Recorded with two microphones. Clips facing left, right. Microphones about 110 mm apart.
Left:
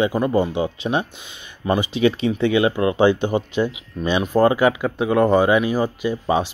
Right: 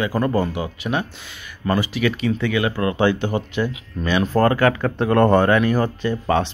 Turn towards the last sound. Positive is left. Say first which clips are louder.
# even
turn(degrees=10)  # may be behind; listen again after turning